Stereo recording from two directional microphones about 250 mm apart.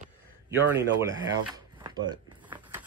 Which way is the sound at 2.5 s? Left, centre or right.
Centre.